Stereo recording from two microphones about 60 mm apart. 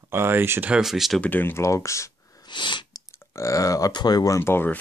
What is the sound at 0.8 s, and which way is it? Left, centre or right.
Speech, centre.